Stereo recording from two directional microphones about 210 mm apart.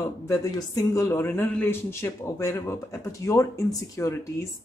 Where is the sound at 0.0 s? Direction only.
15° left (ahead or behind).